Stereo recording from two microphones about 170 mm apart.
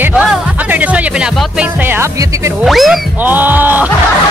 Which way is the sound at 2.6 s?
Centre (ahead or behind).